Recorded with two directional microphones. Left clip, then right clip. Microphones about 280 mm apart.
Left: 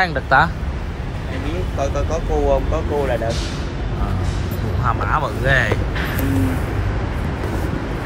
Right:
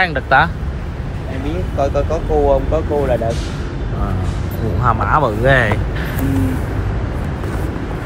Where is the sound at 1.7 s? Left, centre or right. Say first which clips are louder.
Right 6 dB; left.